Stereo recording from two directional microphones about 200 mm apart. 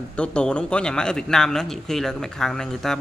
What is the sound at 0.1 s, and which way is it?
A man's voice, 5° left (ahead or behind).